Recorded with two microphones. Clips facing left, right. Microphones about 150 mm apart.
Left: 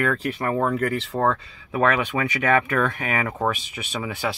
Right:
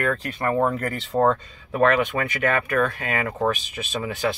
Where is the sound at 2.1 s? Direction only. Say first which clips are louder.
Left 1 dB; 15° left (ahead or behind).